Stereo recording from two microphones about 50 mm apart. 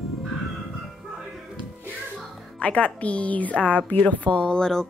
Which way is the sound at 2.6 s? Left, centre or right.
Left.